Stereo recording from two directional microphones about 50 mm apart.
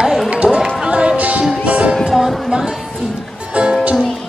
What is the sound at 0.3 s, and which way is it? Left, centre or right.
Music, right.